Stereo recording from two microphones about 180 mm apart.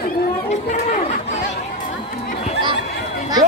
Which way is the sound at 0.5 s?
40° left (ahead or behind).